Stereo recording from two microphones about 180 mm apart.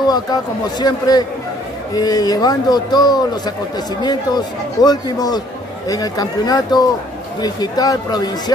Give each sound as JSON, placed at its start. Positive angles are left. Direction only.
{"t": 0.0, "sound": "a man's voice", "side_deg": 20}